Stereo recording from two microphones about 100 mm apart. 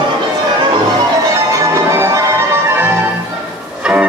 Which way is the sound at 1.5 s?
30° right (ahead or behind).